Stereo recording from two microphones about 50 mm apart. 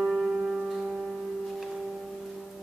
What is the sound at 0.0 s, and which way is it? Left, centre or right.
Music, right.